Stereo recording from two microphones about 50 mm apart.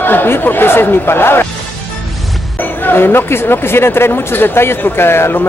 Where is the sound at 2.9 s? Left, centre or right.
Left.